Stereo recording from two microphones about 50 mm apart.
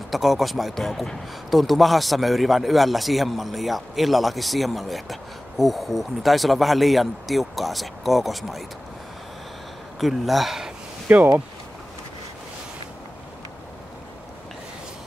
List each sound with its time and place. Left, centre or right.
0.1 s a man's voice: centre
9.9 s a man's voice: centre
11.1 s speech: right